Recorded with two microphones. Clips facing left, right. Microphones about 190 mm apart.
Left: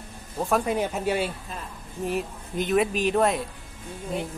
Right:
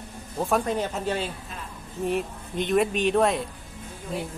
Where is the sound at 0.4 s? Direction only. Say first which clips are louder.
Left 1 dB; centre (ahead or behind).